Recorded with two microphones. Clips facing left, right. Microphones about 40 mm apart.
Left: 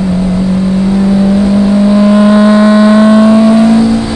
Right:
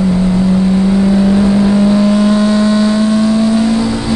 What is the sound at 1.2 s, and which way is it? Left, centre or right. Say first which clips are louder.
Vehicle: left 2 dB; centre.